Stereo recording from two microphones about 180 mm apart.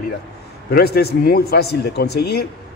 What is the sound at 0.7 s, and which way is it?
A man's voice, 60° left (ahead or behind).